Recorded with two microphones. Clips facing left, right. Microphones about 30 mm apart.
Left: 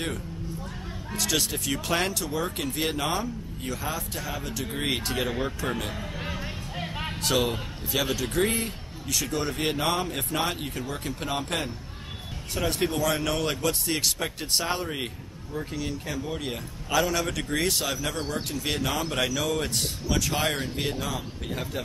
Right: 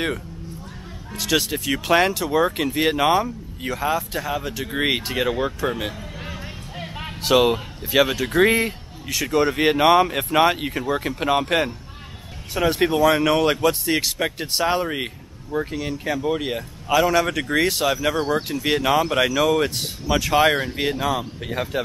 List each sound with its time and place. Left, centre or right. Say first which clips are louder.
1.1 s speech: right 6 dB; centre
5.9 s a sound: even; centre
7.2 s speech: right 9 dB; right